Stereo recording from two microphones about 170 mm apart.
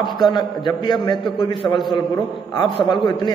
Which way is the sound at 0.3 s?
25° left (ahead or behind).